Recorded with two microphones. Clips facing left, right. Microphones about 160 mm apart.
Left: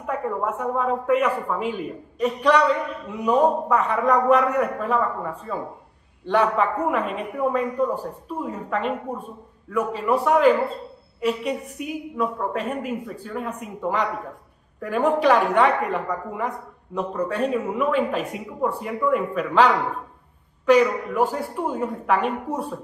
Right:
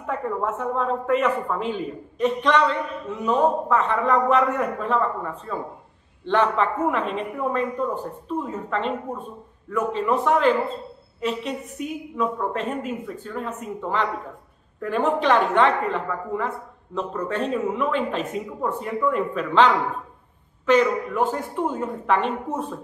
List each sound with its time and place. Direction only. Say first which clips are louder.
0.0 s speech: even; 10° left (ahead or behind)